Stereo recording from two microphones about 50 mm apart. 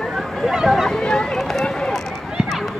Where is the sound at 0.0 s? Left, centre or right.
Centre.